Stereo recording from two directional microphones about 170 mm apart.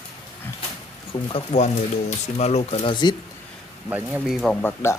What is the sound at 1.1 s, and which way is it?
Speech, 35° left (ahead or behind).